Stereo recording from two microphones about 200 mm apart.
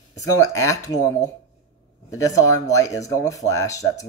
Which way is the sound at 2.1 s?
15° left (ahead or behind).